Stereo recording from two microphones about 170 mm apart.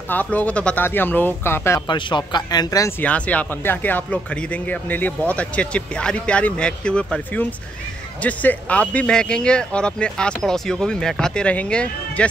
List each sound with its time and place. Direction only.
0.1 s speech: 10° left (ahead or behind)
1.9 s speech: 25° left (ahead or behind)
3.0 s speech: 10° left (ahead or behind)